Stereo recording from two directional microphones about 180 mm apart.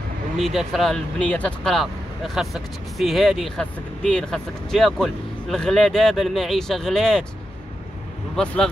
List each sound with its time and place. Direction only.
0.4 s speech: centre (ahead or behind)